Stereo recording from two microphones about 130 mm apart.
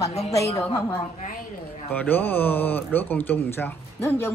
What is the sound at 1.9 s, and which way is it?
A woman's voice, 15° left (ahead or behind).